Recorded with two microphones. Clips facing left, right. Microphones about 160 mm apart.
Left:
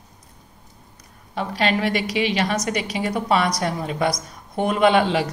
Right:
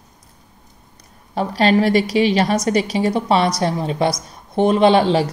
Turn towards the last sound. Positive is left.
turn(degrees=-35)  # may be behind; listen again after turning